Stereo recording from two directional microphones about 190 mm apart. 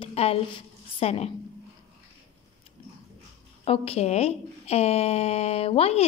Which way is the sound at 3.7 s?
35° left (ahead or behind).